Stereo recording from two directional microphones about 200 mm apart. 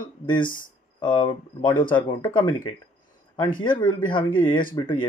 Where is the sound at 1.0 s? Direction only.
25° left (ahead or behind).